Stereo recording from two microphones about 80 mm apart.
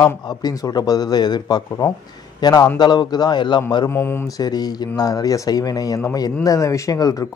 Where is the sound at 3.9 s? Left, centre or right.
Left.